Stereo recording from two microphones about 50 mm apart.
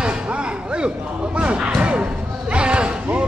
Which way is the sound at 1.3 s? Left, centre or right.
Centre.